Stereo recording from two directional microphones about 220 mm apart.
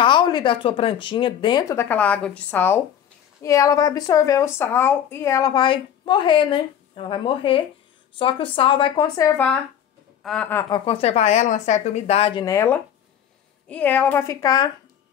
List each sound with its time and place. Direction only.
0.0 s a woman's voice: 20° left (ahead or behind)
10.2 s a woman's voice: 5° left (ahead or behind)
10.9 s a woman's voice: 30° left (ahead or behind)